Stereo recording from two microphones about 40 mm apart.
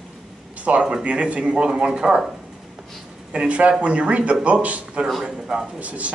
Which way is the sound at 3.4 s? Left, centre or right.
Right.